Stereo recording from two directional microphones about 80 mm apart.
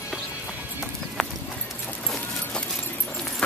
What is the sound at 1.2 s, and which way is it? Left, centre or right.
Clip-clop, centre.